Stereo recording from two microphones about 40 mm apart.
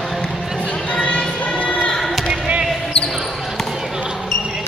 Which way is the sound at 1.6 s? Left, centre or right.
Left.